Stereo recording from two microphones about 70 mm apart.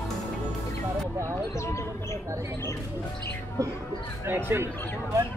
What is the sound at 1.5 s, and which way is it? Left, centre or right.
Speech, left.